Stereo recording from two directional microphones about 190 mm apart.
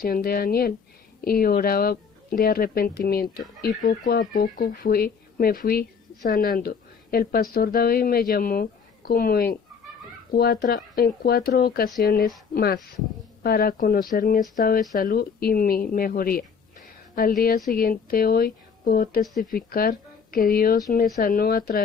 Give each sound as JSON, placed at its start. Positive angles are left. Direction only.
{"t": 0.0, "sound": "speech", "side_deg": 50}